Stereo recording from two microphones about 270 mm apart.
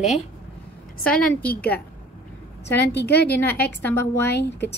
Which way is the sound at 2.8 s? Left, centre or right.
Left.